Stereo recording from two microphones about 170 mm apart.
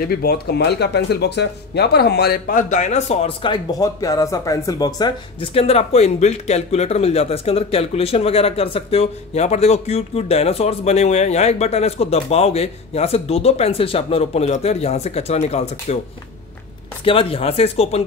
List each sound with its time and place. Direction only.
0.2 s speech: 65° left (ahead or behind); by 16.0 s 40° left (ahead or behind)
17.0 s speech: 30° left (ahead or behind)